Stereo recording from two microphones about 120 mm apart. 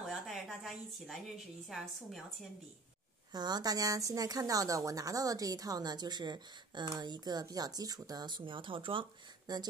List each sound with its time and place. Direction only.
0.0 s a sound: centre (ahead or behind)
1.7 s a woman's voice: centre (ahead or behind)
3.3 s speech: 35° right (ahead or behind)
9.5 s speech: 35° right (ahead or behind)